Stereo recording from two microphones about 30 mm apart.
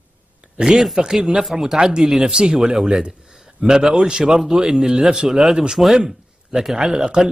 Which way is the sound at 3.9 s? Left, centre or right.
Right.